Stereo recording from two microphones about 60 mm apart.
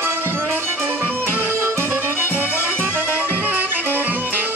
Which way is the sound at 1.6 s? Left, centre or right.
Right.